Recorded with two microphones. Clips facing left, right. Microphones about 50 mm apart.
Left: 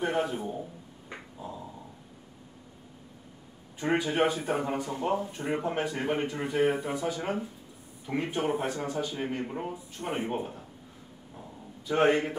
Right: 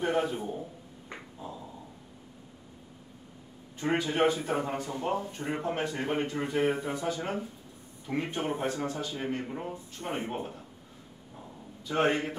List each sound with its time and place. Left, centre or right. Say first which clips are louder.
0.0 s a man's voice: even; centre
1.1 s dog: left 1 dB; centre
4.1 s speech: even; centre
11.9 s speech: left 3 dB; centre